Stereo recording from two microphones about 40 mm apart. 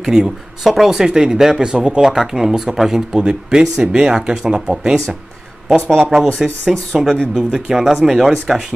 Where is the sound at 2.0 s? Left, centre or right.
Centre.